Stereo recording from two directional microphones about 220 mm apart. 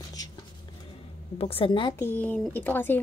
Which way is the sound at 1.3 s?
25° left (ahead or behind).